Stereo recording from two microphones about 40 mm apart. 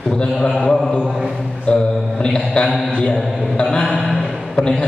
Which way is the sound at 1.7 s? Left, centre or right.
Left.